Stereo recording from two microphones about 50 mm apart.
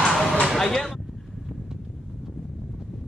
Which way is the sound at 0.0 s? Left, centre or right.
Centre.